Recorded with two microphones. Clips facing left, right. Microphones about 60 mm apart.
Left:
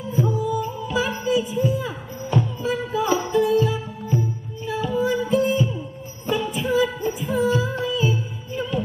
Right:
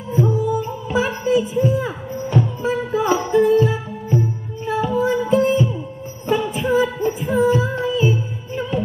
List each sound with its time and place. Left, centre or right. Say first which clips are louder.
0.1 s music: right 4 dB; right